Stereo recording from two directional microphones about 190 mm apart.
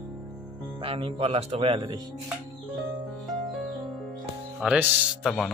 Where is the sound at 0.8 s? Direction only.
30° right (ahead or behind).